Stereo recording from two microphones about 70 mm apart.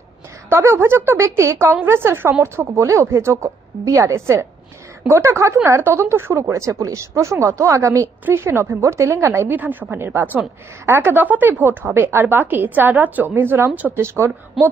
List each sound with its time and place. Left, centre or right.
0.5 s a woman's voice: right
9.5 s a woman's voice: right
14.6 s a sound: centre